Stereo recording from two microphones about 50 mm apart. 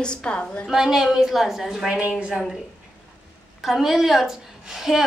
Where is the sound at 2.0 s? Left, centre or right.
Right.